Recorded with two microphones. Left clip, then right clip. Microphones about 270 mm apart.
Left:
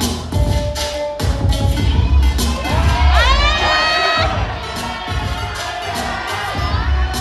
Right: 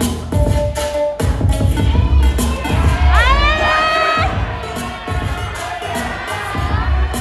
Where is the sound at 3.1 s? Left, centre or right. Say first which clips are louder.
Right 2 dB; right.